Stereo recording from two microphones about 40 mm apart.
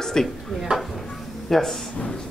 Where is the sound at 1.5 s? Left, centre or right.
Centre.